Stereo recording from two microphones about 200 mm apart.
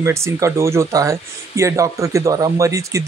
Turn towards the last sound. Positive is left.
turn(degrees=-15)  # may be behind; listen again after turning